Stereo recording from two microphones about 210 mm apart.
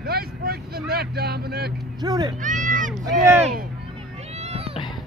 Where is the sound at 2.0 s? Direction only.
20° right (ahead or behind).